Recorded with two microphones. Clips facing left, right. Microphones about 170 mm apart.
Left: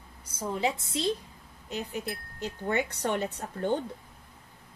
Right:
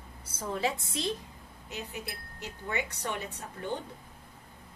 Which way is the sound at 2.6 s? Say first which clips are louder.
Left 6 dB; 55° left (ahead or behind).